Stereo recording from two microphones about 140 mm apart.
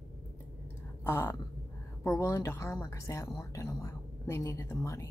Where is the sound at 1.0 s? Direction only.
15° left (ahead or behind).